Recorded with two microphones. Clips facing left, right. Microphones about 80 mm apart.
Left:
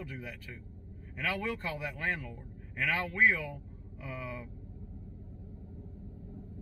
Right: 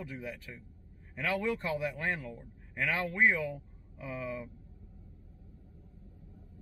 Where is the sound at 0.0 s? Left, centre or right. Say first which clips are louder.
Right 2 dB; centre.